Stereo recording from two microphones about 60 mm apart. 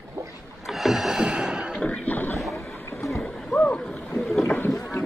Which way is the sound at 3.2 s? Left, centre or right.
Centre.